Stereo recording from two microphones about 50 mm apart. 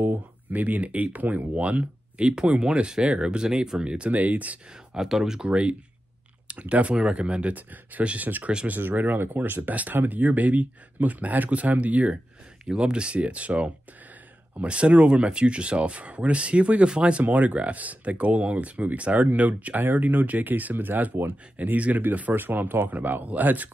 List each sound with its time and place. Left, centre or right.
0.5 s speech: right
4.1 s speech: right
4.9 s speech: centre
5.5 s speech: right
7.5 s speech: right